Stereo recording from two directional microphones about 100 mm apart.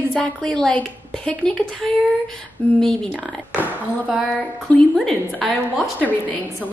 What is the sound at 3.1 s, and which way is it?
A woman's voice, 10° right (ahead or behind).